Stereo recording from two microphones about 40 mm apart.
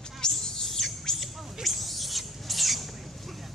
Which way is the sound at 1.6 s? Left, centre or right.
Centre.